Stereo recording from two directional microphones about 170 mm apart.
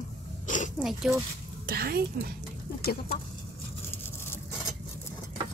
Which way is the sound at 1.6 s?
65° right (ahead or behind).